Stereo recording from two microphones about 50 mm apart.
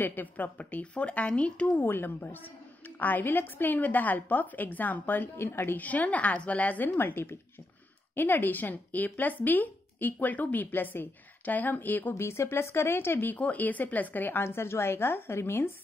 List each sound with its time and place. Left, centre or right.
0.0 s speech: left
1.8 s a woman's voice: left
5.4 s a woman's voice: left
5.8 s a woman's voice: left
6.8 s a woman's voice: left
12.1 s a woman's voice: left
13.3 s speech: left
14.4 s a woman's voice: left